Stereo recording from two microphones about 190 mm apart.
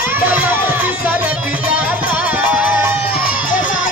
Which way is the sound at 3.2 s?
45° left (ahead or behind).